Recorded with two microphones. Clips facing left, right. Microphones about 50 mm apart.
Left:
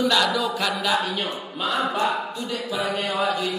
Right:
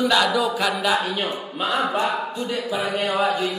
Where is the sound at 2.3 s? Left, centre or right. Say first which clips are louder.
Right 2 dB; right.